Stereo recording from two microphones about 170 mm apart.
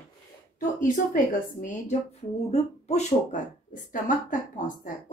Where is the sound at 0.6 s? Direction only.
50° left (ahead or behind).